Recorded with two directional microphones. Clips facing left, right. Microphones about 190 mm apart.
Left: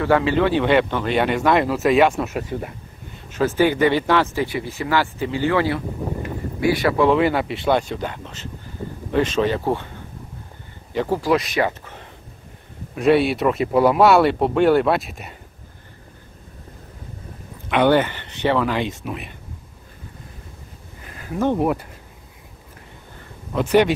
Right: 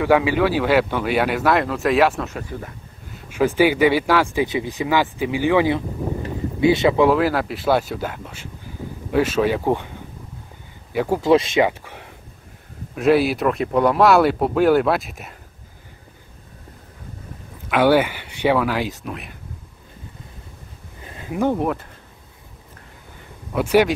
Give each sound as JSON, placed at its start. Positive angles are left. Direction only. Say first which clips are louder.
{"t": 0.0, "sound": "speech", "louder": "right 1 dB", "side_deg": -10}
{"t": 2.2, "sound": "speech", "louder": "left 4 dB", "side_deg": 20}
{"t": 3.3, "sound": "speech", "louder": "right 1 dB", "side_deg": -10}
{"t": 7.1, "sound": "speech", "louder": "even", "side_deg": 0}
{"t": 10.9, "sound": "speech", "louder": "right 1 dB", "side_deg": -10}
{"t": 11.1, "sound": "speech", "louder": "right 5 dB", "side_deg": -25}
{"t": 11.6, "sound": "speech", "louder": "right 3 dB", "side_deg": -10}
{"t": 17.6, "sound": "speech", "louder": "right 1 dB", "side_deg": -5}
{"t": 21.1, "sound": "a sound", "louder": "right 1 dB", "side_deg": -25}
{"t": 21.5, "sound": "speech", "louder": "left 2 dB", "side_deg": 10}
{"t": 23.5, "sound": "speech", "louder": "even", "side_deg": -10}